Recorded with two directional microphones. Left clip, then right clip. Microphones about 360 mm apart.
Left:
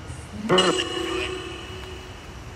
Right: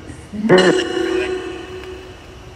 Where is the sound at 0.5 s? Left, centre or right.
Right.